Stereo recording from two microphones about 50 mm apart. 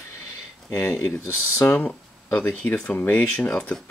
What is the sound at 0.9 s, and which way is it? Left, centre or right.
Speech, left.